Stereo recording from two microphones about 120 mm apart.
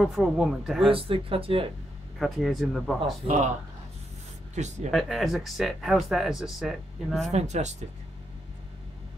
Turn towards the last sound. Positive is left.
turn(degrees=-70)  # may be behind; listen again after turning